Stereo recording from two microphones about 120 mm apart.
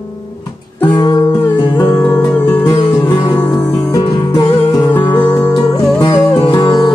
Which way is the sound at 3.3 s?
10° left (ahead or behind).